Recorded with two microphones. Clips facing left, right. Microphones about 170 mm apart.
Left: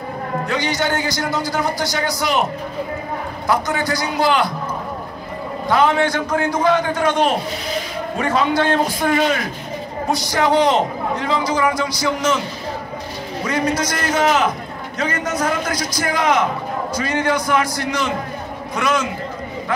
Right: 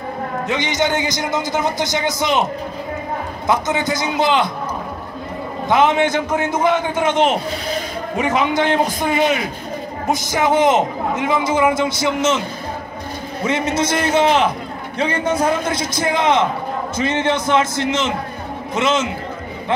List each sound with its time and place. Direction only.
0.5 s a man's voice: 20° right (ahead or behind)
3.4 s a man's voice: 20° right (ahead or behind)
5.7 s a man's voice: 20° right (ahead or behind)
13.4 s a man's voice: 25° right (ahead or behind)